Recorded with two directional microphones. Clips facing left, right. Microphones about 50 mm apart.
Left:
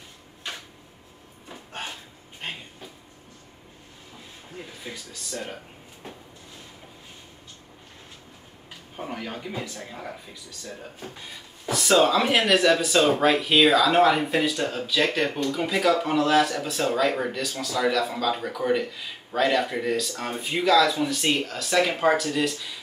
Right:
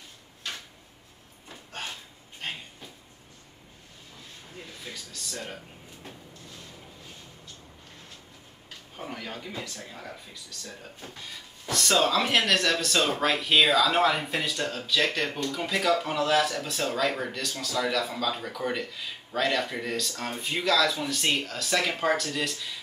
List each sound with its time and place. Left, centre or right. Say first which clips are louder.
0.5 s a sound: left 1 dB; centre
4.6 s speech: left 3 dB; centre
8.9 s a man's voice: left 4 dB; centre